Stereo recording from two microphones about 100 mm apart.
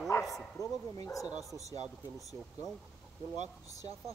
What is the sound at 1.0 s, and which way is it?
Speech, 35° left (ahead or behind).